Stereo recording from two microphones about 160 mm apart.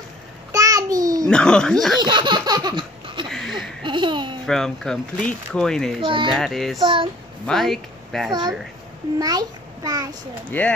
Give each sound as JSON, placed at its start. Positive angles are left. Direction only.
{"t": 0.5, "sound": "a sound", "side_deg": -20}
{"t": 1.3, "sound": "speech", "side_deg": 5}
{"t": 2.0, "sound": "laughter", "side_deg": -30}
{"t": 3.3, "sound": "a sound", "side_deg": 0}
{"t": 3.8, "sound": "a child's voice", "side_deg": -30}
{"t": 4.5, "sound": "speech", "side_deg": 5}
{"t": 5.9, "sound": "speech", "side_deg": -30}
{"t": 6.3, "sound": "speech", "side_deg": 0}
{"t": 6.8, "sound": "speech", "side_deg": -30}
{"t": 7.4, "sound": "speech", "side_deg": 0}
{"t": 8.3, "sound": "a child's voice", "side_deg": -25}
{"t": 10.5, "sound": "speech", "side_deg": 10}